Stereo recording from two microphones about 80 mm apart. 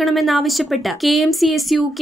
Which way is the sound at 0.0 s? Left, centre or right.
Centre.